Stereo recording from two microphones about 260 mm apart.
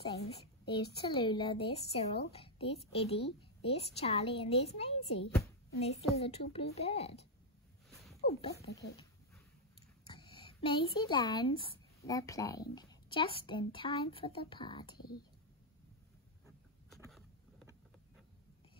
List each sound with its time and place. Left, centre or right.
0.1 s a woman's voice: left
8.2 s speech: left
10.0 s a sound: centre
11.0 s speech: centre